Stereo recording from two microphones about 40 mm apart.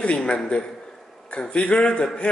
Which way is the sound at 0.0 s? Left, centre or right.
Left.